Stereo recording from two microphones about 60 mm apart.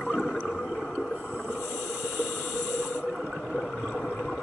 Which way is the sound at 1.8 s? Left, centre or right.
Centre.